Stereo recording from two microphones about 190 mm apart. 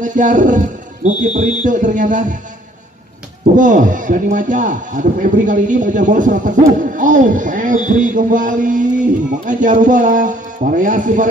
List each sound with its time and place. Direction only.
0.0 s speech: 45° right (ahead or behind)
3.5 s a man's voice: 40° right (ahead or behind)